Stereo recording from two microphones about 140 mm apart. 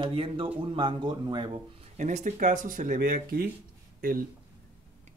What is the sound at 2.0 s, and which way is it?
Speech, 60° right (ahead or behind).